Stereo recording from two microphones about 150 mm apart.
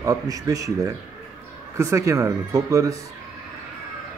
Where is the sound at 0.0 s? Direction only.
20° right (ahead or behind).